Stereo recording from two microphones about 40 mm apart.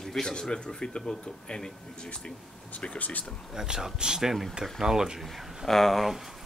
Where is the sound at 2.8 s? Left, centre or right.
Left.